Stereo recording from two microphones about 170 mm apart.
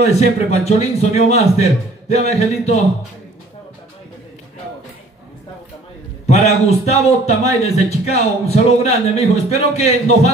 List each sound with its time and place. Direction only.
0.0 s a man's voice: 40° left (ahead or behind)
6.2 s a man's voice: 40° left (ahead or behind)